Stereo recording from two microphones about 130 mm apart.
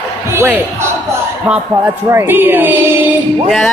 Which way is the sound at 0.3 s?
15° right (ahead or behind).